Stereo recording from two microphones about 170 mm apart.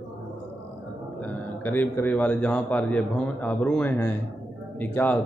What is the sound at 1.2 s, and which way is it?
A man's voice, 10° left (ahead or behind).